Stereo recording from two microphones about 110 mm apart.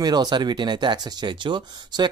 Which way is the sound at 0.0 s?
40° right (ahead or behind).